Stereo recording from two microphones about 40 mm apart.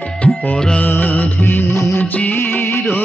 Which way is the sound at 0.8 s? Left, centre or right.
Left.